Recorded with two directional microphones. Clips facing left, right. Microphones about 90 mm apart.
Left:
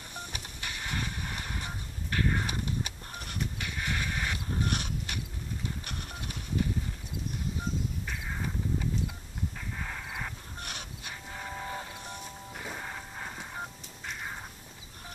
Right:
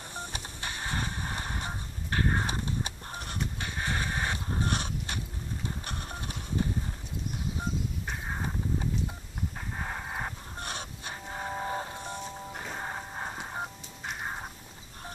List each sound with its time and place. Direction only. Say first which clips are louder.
0.1 s music: right 2 dB; 30° right (ahead or behind)
5.9 s printer: right 2 dB; 30° right (ahead or behind)
8.0 s a sound: right 2 dB; 40° right (ahead or behind)